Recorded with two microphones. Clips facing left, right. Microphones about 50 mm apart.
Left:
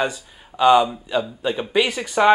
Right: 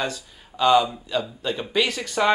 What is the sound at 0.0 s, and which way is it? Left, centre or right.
Speech, centre.